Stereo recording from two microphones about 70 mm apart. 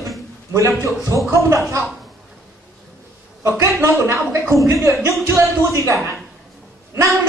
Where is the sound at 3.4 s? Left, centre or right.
Right.